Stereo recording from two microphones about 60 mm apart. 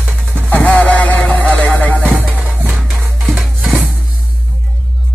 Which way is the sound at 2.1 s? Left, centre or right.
Right.